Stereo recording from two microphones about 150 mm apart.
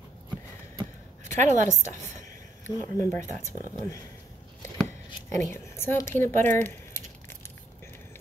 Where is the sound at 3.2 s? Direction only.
55° right (ahead or behind).